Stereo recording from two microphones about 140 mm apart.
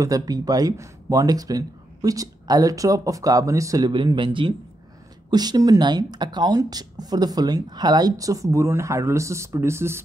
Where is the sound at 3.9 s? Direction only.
35° right (ahead or behind); by 10.0 s 20° right (ahead or behind).